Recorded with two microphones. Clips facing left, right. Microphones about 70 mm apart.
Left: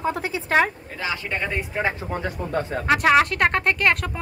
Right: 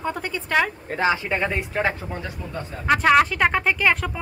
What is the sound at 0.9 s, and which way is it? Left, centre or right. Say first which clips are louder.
Speech: right 7 dB; right.